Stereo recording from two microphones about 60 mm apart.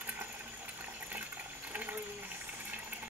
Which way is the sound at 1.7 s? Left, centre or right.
Right.